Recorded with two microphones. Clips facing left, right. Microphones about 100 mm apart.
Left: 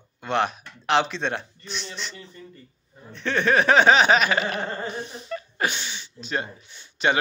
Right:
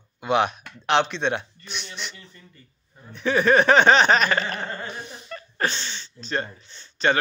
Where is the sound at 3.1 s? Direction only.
5° right (ahead or behind).